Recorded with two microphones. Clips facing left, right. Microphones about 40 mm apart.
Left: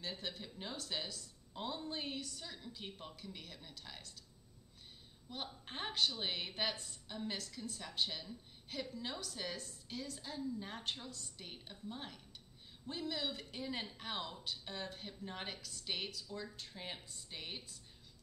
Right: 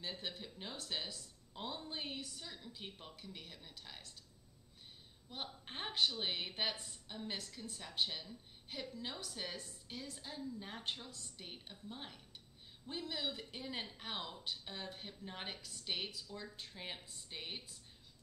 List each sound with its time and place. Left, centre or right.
0.0 s a woman's voice: centre
5.3 s a woman's voice: centre
16.3 s a woman's voice: centre